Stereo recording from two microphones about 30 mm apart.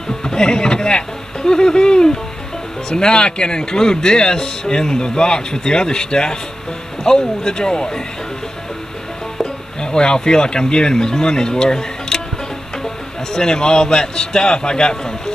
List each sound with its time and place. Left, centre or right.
0.2 s speech: left
9.4 s speech: left
13.3 s speech: left